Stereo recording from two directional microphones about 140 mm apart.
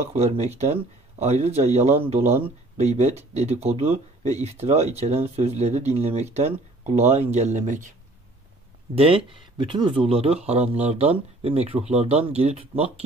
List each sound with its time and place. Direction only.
0.0 s speech: 50° right (ahead or behind)
8.9 s speech: 40° right (ahead or behind)